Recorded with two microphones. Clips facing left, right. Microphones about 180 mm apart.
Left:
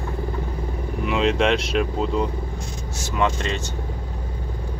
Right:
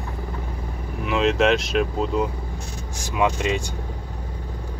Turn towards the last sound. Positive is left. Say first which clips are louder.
# right 1 dB
turn(degrees=-10)  # may be behind; listen again after turning